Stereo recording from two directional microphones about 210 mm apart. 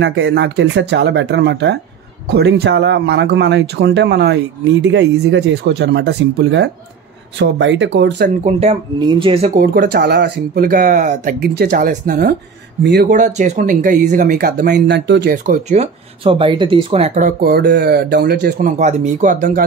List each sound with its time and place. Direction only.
0.0 s speech: 55° right (ahead or behind)
8.5 s speech: 30° right (ahead or behind)
9.5 s speech: 50° right (ahead or behind)
13.1 s speech: 35° right (ahead or behind); by 15.3 s 55° right (ahead or behind)
15.3 s speech: 35° right (ahead or behind); by 18.7 s 50° right (ahead or behind)
18.8 s speech: 35° right (ahead or behind)